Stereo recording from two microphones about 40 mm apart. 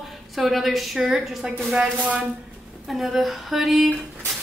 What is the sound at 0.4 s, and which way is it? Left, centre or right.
A woman's voice, centre.